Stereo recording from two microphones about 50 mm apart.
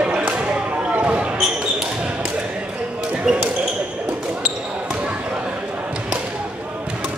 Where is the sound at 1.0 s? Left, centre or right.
Right.